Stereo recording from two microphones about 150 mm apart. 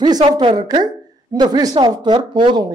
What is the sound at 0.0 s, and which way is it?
Speech, 25° right (ahead or behind).